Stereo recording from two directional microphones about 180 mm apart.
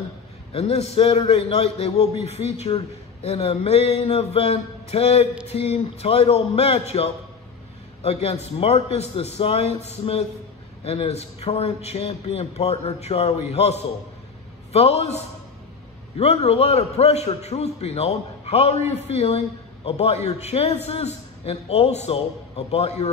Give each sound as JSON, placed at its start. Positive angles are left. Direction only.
{"t": 0.5, "sound": "a man's voice", "side_deg": 35}
{"t": 8.0, "sound": "a man's voice", "side_deg": 35}